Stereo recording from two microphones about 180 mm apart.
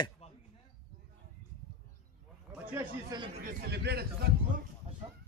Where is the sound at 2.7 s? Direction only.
20° right (ahead or behind).